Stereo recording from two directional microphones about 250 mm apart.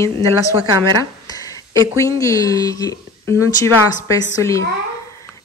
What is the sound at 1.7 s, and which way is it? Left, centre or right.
A woman's voice, centre.